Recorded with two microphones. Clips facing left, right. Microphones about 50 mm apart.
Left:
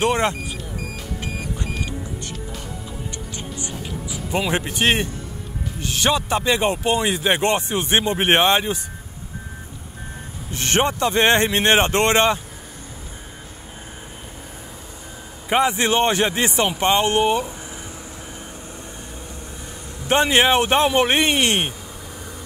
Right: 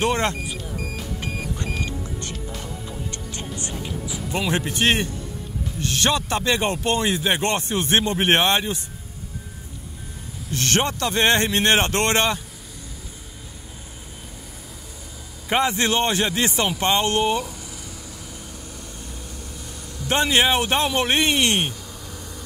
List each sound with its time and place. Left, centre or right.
0.0 s speech: centre
4.3 s speech: centre
10.5 s a man's voice: left
15.4 s a man's voice: centre
20.0 s a man's voice: left